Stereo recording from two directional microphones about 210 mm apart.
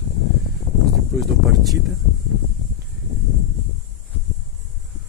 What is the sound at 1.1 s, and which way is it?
Speech, centre (ahead or behind).